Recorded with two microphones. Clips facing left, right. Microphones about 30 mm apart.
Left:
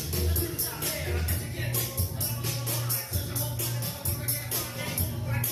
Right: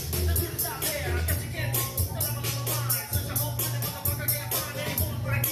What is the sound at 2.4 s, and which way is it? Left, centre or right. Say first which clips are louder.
Music: right 1 dB; right.